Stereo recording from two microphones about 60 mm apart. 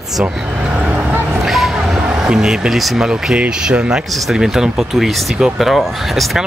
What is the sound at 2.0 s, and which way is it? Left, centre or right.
Speech, centre.